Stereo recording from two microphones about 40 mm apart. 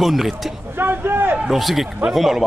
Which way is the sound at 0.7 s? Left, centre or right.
Right.